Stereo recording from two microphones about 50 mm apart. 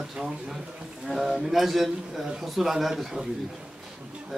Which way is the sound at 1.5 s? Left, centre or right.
Centre.